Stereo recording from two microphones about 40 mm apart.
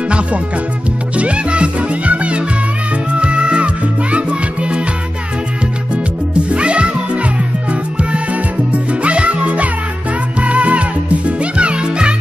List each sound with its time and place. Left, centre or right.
1.1 s music: right
6.3 s music: right